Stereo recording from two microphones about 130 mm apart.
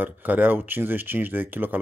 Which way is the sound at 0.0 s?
15° right (ahead or behind).